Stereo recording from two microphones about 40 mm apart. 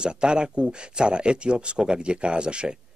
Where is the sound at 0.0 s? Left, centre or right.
Right.